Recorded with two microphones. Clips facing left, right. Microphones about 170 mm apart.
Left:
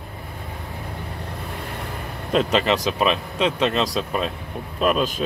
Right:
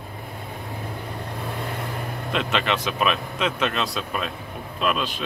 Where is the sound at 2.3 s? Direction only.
35° left (ahead or behind).